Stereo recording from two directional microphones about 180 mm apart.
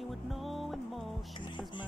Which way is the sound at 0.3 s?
Centre (ahead or behind).